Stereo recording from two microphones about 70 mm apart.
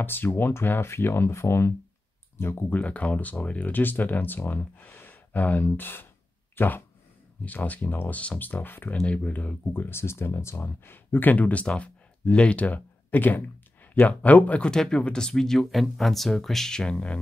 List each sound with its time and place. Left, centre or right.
0.0 s speech: left
2.7 s speech: left
9.0 s speech: centre
9.8 s speech: left
14.7 s speech: centre